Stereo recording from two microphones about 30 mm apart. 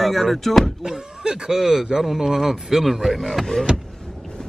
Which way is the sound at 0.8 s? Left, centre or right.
Centre.